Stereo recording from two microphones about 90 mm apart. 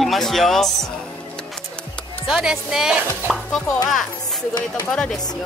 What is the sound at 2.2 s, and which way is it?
Speech, 5° right (ahead or behind).